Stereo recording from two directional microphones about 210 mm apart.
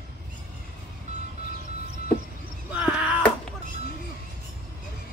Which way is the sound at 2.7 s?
5° right (ahead or behind).